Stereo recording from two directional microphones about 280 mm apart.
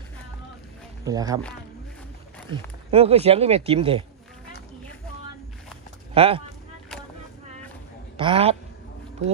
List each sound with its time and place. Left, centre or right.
1.0 s speech: centre
2.5 s speech: right
6.1 s speech: centre
8.2 s speech: centre